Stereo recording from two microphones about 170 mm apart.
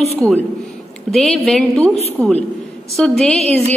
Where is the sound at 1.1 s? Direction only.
Centre (ahead or behind).